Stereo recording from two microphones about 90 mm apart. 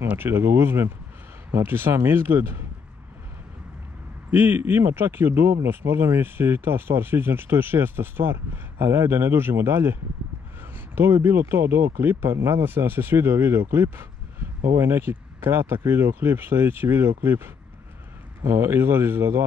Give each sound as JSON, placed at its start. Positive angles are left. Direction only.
{"t": 0.1, "sound": "speech", "side_deg": -25}
{"t": 4.3, "sound": "speech", "side_deg": -20}
{"t": 11.0, "sound": "speech", "side_deg": -25}